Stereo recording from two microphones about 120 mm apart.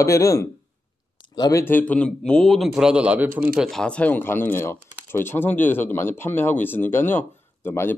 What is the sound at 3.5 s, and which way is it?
Speech, centre (ahead or behind).